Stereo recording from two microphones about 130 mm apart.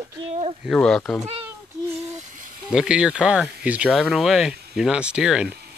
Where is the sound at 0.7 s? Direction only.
5° left (ahead or behind).